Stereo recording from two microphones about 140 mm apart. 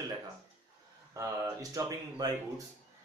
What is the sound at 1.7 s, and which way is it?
Speech, 25° right (ahead or behind).